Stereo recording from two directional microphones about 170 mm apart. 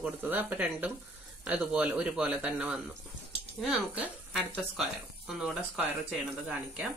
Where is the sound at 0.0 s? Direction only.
10° right (ahead or behind).